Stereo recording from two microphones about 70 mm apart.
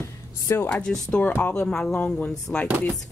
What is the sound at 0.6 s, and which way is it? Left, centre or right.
Speech, centre.